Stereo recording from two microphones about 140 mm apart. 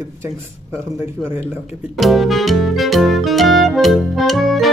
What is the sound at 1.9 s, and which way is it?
Music, centre (ahead or behind).